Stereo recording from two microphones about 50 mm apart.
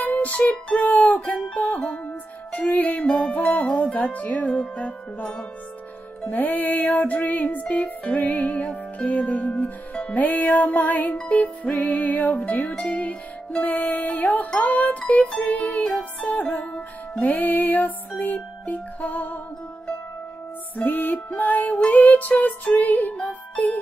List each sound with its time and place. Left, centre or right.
0.0 s music: left
6.2 s music: left
9.5 s music: centre
10.2 s music: left
20.7 s music: left
23.1 s music: centre